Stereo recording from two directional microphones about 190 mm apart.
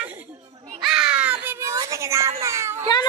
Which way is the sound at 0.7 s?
5° right (ahead or behind).